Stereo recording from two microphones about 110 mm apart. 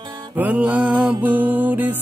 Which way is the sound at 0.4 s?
15° right (ahead or behind).